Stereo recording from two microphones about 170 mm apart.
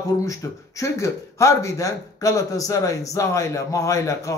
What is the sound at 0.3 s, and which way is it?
A man's voice, 20° left (ahead or behind).